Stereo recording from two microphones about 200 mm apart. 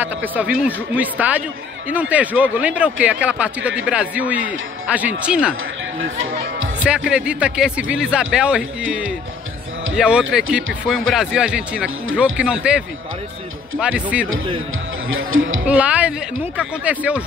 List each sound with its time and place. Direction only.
0.0 s speech: 10° right (ahead or behind)
6.8 s speech: 5° right (ahead or behind)
15.0 s speech: 80° right
15.6 s speech: 5° right (ahead or behind)